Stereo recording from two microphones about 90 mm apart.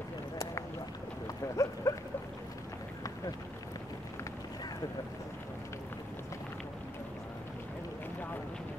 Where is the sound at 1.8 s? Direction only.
35° left (ahead or behind).